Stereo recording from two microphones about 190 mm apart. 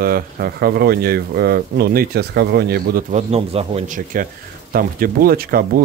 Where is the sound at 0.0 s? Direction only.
50° right (ahead or behind).